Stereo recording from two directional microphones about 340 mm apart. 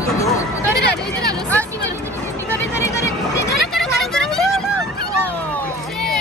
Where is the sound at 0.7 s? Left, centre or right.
Left.